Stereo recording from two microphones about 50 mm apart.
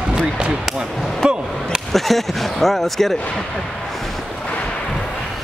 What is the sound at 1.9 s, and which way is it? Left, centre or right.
Speech, centre.